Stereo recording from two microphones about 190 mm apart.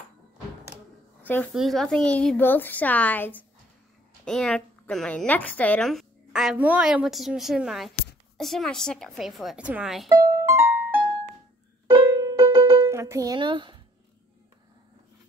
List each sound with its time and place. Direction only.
1.2 s a woman's voice: 10° left (ahead or behind)
10.1 s music: 15° right (ahead or behind)
11.9 s music: 15° right (ahead or behind)